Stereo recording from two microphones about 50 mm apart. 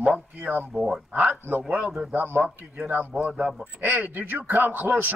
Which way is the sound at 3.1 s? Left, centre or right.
Centre.